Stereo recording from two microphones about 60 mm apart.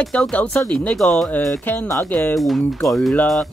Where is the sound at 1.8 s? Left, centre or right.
Left.